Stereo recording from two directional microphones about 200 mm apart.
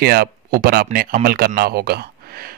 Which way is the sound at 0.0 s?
50° right (ahead or behind).